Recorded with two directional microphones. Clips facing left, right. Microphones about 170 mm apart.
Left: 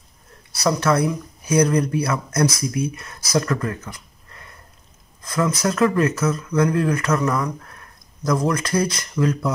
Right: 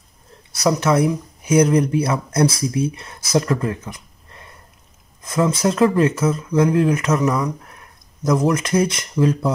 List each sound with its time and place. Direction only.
0.7 s speech: 25° right (ahead or behind)